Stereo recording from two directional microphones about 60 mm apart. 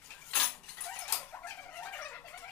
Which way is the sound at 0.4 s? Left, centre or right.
Left.